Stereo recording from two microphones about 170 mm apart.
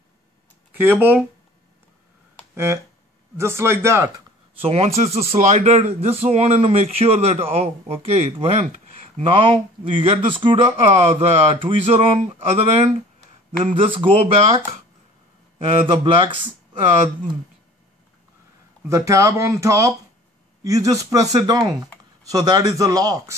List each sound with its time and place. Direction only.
0.7 s speech: 10° right (ahead or behind)
2.5 s speech: 15° right (ahead or behind)
4.6 s speech: 35° right (ahead or behind)
18.9 s speech: 20° right (ahead or behind)